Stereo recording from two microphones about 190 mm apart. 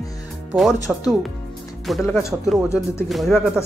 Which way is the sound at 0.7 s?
20° left (ahead or behind).